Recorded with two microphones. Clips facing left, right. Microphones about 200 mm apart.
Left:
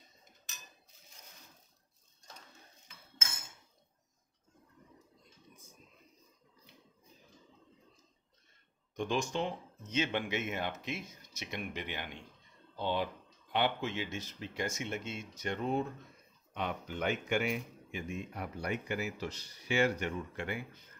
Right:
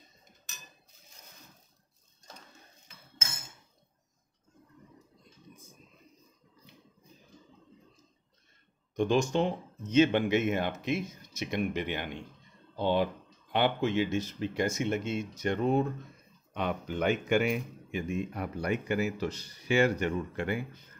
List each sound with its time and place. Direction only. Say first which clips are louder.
8.9 s speech: right 7 dB; 60° right (ahead or behind)
9.9 s speech: right 10 dB; 50° right (ahead or behind)